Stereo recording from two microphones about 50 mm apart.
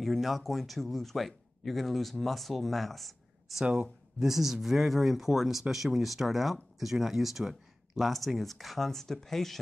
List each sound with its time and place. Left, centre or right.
0.0 s speech: centre
3.6 s speech: right
4.2 s speech: centre